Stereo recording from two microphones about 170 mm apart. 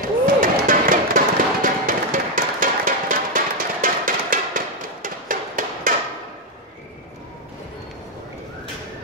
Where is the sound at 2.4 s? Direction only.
50° right (ahead or behind).